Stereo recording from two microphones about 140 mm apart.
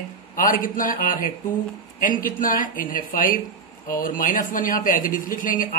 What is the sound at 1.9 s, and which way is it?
Speech, 75° left (ahead or behind).